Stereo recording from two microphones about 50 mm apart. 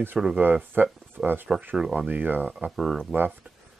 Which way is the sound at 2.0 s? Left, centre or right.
Right.